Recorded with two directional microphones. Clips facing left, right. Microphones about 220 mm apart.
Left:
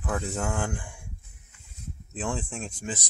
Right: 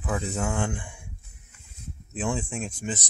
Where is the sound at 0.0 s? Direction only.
5° right (ahead or behind).